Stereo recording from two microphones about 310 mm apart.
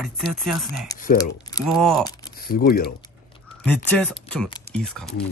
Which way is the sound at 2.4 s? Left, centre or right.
Left.